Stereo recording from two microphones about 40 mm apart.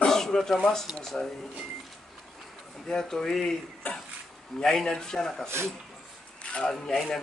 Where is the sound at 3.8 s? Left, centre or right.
Left.